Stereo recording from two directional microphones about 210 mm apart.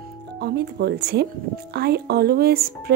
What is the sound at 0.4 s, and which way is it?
Speech, 50° right (ahead or behind).